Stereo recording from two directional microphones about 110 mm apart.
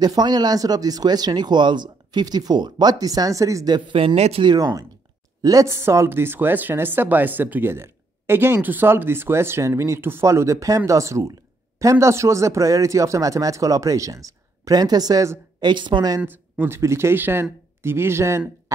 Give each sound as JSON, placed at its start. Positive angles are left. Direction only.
{"t": 0.0, "sound": "speech", "side_deg": -40}
{"t": 3.7, "sound": "speech", "side_deg": -50}
{"t": 4.5, "sound": "speech", "side_deg": -40}
{"t": 15.6, "sound": "speech", "side_deg": -45}
{"t": 16.2, "sound": "speech", "side_deg": -15}